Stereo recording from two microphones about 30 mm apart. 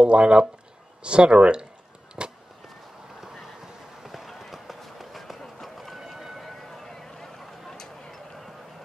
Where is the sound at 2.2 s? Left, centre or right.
Right.